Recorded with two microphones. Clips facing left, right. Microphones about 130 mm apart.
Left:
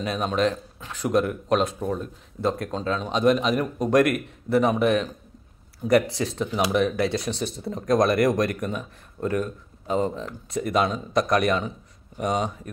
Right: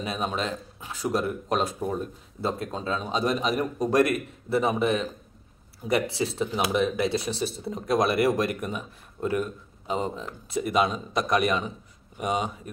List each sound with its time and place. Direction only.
0.0 s speech: 5° right (ahead or behind)